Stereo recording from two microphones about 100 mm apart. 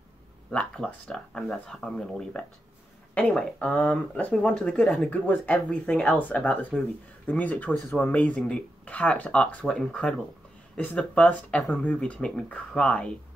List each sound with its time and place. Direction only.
0.5 s speech: 10° left (ahead or behind)
5.1 s speech: 15° left (ahead or behind)